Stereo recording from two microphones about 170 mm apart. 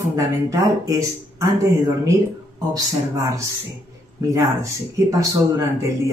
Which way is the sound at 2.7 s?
20° right (ahead or behind).